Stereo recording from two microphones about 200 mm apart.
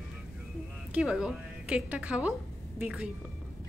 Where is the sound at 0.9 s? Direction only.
5° right (ahead or behind).